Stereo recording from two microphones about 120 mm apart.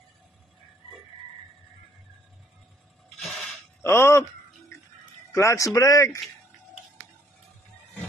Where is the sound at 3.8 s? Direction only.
20° left (ahead or behind).